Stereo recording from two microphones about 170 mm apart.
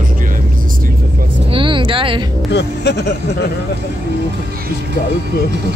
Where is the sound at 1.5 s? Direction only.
30° right (ahead or behind).